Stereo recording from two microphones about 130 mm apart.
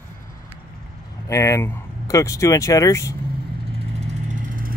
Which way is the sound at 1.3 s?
20° left (ahead or behind).